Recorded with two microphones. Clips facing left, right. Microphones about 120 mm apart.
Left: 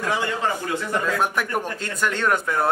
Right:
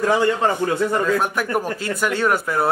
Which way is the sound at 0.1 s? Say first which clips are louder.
Right 5 dB; 35° right (ahead or behind).